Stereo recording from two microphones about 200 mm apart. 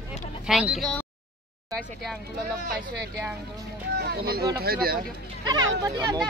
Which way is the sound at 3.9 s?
50° right (ahead or behind).